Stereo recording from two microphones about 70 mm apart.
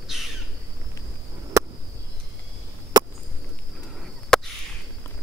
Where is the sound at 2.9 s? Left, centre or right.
Right.